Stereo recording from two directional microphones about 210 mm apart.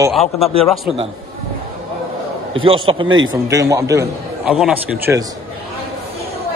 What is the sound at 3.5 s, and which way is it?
Speech, 15° right (ahead or behind).